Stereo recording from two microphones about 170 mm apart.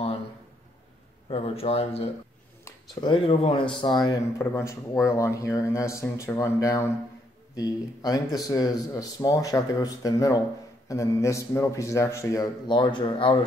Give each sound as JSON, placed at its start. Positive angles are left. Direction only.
{"t": 1.3, "sound": "speech", "side_deg": 35}
{"t": 2.6, "sound": "a sound", "side_deg": 25}
{"t": 3.3, "sound": "speech", "side_deg": 35}